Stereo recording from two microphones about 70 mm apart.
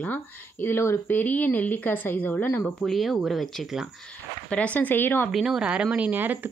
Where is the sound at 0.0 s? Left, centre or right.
Left.